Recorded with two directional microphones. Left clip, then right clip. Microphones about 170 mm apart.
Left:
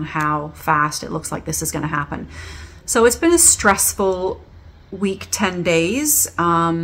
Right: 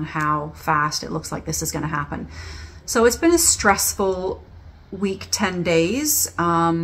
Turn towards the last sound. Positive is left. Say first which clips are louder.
# left 2 dB
turn(degrees=15)  # may be behind; listen again after turning